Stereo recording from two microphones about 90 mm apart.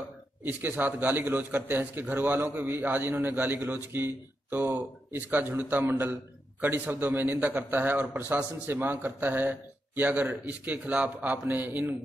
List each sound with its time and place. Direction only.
0.4 s a man's voice: 20° right (ahead or behind)